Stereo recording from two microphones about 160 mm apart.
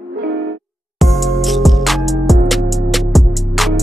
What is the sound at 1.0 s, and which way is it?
Music, centre (ahead or behind).